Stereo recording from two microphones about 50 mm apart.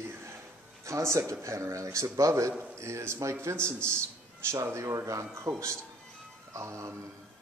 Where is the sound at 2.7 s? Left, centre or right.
Right.